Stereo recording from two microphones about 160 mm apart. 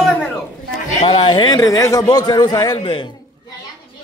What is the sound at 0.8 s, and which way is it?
A man's voice, 35° left (ahead or behind).